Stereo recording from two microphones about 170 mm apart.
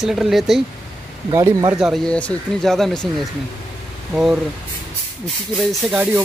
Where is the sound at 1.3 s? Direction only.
20° right (ahead or behind).